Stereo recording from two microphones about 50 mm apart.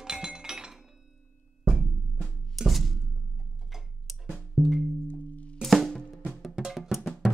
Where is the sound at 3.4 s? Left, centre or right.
Centre.